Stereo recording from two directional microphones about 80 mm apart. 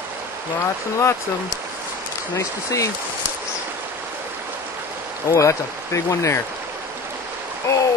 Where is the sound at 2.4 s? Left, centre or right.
Left.